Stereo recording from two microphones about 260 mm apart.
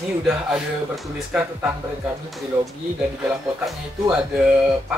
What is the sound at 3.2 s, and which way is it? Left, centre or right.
Speech, centre.